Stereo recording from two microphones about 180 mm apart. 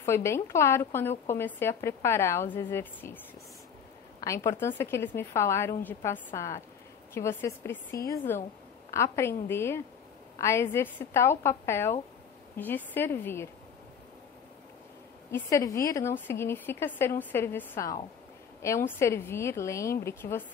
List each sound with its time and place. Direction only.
0.0 s a woman's voice: 15° left (ahead or behind)
4.5 s a woman's voice: 15° left (ahead or behind)
15.3 s a woman's voice: 15° left (ahead or behind)